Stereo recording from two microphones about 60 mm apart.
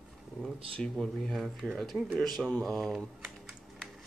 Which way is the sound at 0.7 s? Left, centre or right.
Centre.